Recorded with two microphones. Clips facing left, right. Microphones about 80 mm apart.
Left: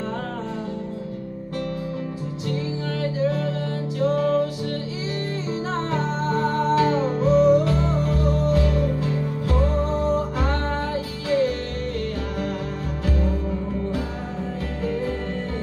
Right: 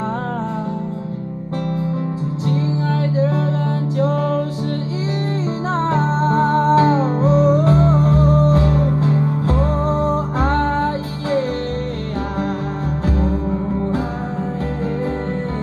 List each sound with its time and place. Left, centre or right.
2.4 s music: right
5.8 s music: right
13.0 s music: right